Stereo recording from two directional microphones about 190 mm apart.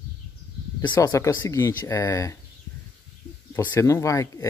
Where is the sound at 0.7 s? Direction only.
20° left (ahead or behind).